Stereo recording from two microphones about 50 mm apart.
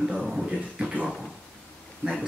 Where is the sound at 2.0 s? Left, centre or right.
Right.